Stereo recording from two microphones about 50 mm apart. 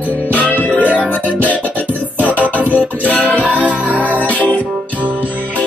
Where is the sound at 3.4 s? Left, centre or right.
Right.